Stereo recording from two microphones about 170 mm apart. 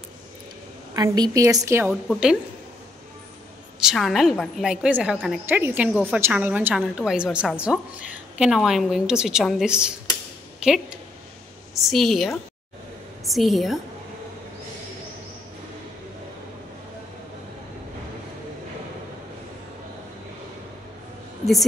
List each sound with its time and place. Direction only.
0.9 s a woman's voice: 25° right (ahead or behind)
2.0 s a woman's voice: 5° right (ahead or behind)
3.8 s a woman's voice: centre (ahead or behind)
5.5 s a woman's voice: 15° right (ahead or behind)
10.6 s a sound: 5° right (ahead or behind)
11.7 s a woman's voice: centre (ahead or behind)